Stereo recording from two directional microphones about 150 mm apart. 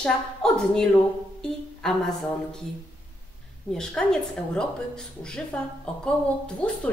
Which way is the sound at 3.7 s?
5° left (ahead or behind).